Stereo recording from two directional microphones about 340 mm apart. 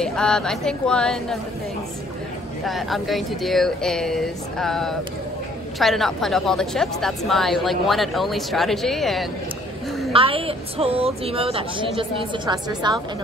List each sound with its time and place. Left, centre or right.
0.0 s a woman's voice: centre
2.6 s a woman's voice: centre
10.1 s a woman's voice: centre